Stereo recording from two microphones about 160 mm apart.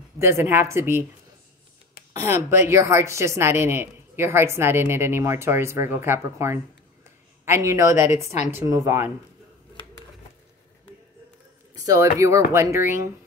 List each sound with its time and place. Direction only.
0.2 s speech: 15° right (ahead or behind)
2.1 s speech: 15° right (ahead or behind)
7.9 s a woman's voice: 50° left (ahead or behind)
8.5 s speech: 20° right (ahead or behind)
11.7 s speech: 20° right (ahead or behind)